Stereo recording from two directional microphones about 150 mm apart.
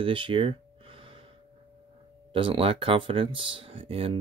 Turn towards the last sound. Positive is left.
turn(degrees=-40)  # may be behind; listen again after turning